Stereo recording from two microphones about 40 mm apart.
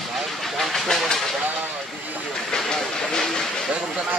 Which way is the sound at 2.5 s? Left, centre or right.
Centre.